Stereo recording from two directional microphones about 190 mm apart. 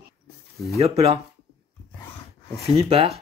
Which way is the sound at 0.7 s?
30° right (ahead or behind).